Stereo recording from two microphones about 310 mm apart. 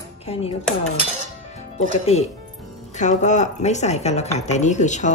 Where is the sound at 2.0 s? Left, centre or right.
Left.